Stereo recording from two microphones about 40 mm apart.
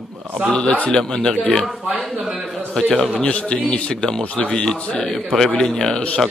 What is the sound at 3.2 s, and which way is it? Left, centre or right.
A man's voice, left.